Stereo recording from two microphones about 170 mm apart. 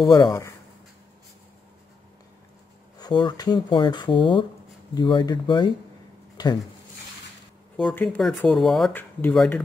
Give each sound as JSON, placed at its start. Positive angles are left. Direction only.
{"t": 0.0, "sound": "speech", "side_deg": 20}
{"t": 3.0, "sound": "speech", "side_deg": 25}
{"t": 6.3, "sound": "a sound", "side_deg": 25}
{"t": 7.9, "sound": "speech", "side_deg": 10}